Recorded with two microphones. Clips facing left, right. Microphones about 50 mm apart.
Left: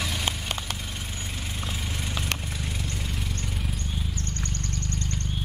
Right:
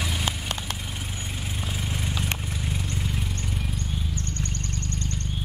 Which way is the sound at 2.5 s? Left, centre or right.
Centre.